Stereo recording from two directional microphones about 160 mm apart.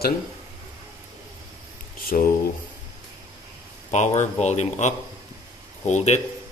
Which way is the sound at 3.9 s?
45° left (ahead or behind).